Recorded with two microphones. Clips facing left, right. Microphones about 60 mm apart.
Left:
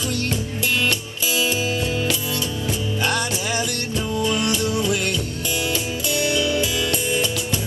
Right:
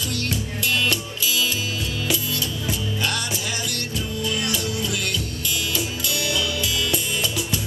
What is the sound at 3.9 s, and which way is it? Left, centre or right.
Music, left.